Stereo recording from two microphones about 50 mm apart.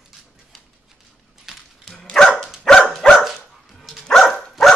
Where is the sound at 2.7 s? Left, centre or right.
Centre.